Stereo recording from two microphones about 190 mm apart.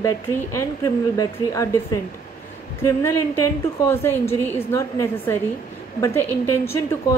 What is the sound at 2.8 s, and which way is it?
A woman's voice, 15° left (ahead or behind).